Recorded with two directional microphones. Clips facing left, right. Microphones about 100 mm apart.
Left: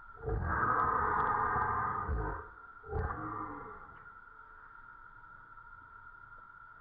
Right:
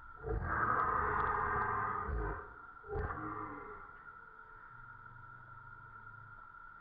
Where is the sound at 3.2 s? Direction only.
15° left (ahead or behind).